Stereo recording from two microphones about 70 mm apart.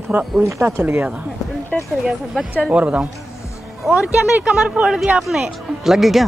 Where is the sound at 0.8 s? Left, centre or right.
Right.